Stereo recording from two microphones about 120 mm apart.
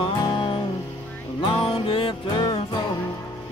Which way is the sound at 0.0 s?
40° left (ahead or behind).